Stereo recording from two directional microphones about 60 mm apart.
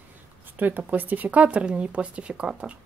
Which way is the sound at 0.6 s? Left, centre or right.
Right.